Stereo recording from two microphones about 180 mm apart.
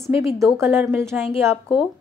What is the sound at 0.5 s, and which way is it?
Speech, 15° right (ahead or behind).